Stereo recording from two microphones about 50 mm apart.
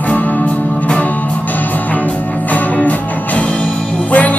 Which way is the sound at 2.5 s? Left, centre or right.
Left.